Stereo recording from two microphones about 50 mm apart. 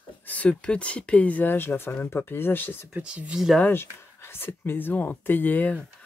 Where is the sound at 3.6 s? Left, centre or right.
Left.